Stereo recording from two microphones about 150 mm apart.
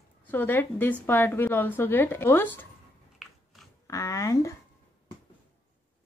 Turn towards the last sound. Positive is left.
turn(degrees=20)  # may be behind; listen again after turning